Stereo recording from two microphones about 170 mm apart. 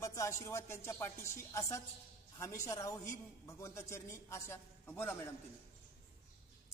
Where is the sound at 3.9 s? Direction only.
15° left (ahead or behind).